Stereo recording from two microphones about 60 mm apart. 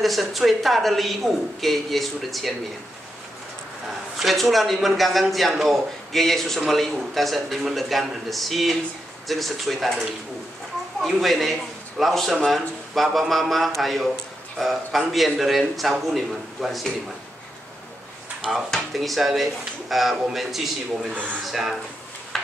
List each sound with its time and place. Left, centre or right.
0.0 s a man's voice: centre
4.2 s a man's voice: centre
18.7 s a man's voice: centre
21.1 s speech: right
21.5 s a man's voice: centre
22.3 s tick-tock: centre